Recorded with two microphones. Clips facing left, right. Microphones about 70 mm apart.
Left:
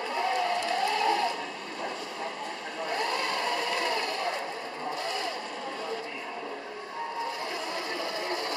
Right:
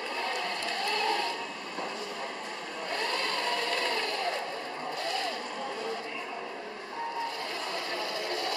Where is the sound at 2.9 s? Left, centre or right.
Centre.